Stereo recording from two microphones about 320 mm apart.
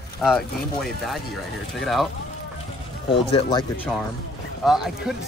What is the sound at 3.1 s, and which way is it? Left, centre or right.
Speech, centre.